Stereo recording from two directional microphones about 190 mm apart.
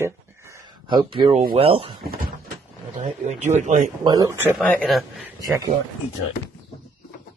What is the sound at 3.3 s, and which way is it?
Speech, 40° right (ahead or behind).